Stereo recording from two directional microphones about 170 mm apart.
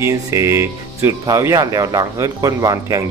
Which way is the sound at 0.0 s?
15° right (ahead or behind).